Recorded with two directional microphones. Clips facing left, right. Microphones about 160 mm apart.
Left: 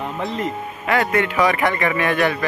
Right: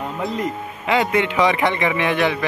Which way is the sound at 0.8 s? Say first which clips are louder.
Right 1 dB; 20° right (ahead or behind).